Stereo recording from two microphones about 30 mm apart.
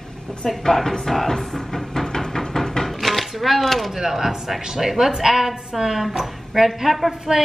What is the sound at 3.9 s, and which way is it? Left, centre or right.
A woman's voice, centre.